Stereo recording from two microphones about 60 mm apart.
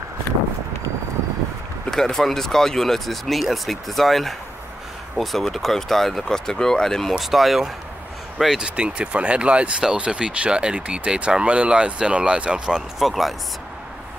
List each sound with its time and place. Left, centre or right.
1.9 s speech: centre
8.5 s speech: centre
13.0 s speech: centre